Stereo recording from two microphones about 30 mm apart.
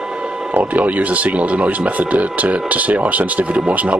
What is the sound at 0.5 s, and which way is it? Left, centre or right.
Speech, right.